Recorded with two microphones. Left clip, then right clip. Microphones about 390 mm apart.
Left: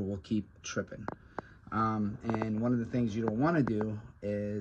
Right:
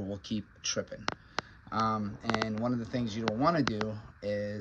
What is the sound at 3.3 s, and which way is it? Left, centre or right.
Speech, left.